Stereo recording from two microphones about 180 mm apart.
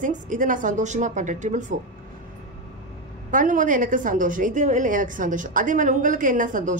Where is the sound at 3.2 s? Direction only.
45° right (ahead or behind).